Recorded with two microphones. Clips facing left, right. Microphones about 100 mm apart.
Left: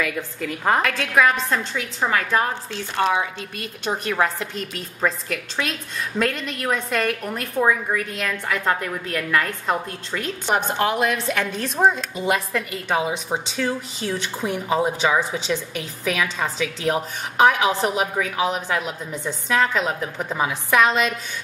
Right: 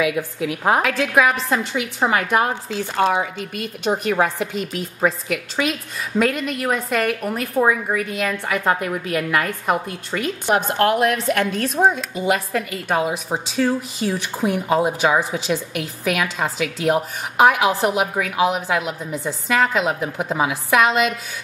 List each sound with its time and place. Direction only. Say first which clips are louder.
0.0 s a woman's voice: right 5 dB; 10° right (ahead or behind)